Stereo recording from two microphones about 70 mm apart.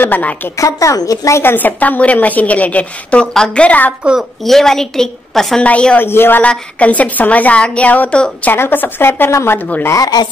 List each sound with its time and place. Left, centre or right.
0.0 s a woman's voice: left
0.6 s a woman's voice: left
1.4 s a woman's voice: left
4.5 s a woman's voice: centre
5.6 s a woman's voice: centre
5.9 s a woman's voice: left
6.4 s a woman's voice: centre
8.5 s a woman's voice: left
9.3 s a woman's voice: left